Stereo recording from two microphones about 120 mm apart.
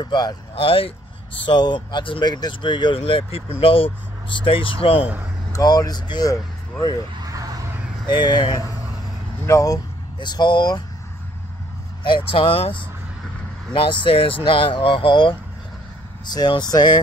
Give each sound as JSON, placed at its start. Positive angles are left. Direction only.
{"t": 0.0, "sound": "speech", "side_deg": 35}
{"t": 0.7, "sound": "speech", "side_deg": 50}
{"t": 1.4, "sound": "speech", "side_deg": 40}
{"t": 3.0, "sound": "speech", "side_deg": 50}
{"t": 5.5, "sound": "speech", "side_deg": 35}
{"t": 8.1, "sound": "speech", "side_deg": 40}
{"t": 10.2, "sound": "speech", "side_deg": 40}
{"t": 12.3, "sound": "speech", "side_deg": 50}